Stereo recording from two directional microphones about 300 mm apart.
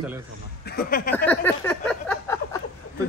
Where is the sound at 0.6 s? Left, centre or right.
Left.